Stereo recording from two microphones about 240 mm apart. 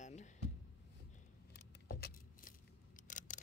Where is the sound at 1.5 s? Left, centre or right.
Left.